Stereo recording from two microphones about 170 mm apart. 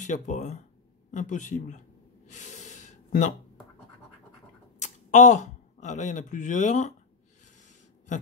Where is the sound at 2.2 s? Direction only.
45° left (ahead or behind).